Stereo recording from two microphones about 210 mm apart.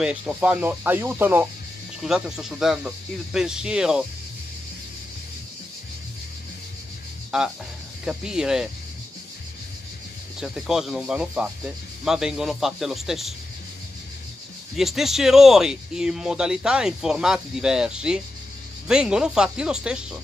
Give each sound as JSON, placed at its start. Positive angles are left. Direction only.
{"t": 0.0, "sound": "speech", "side_deg": -5}
{"t": 7.2, "sound": "speech", "side_deg": -5}
{"t": 10.4, "sound": "speech", "side_deg": 0}
{"t": 14.8, "sound": "speech", "side_deg": 0}